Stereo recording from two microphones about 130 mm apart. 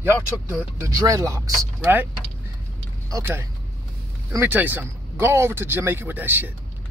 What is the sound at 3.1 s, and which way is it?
Speech, 20° right (ahead or behind).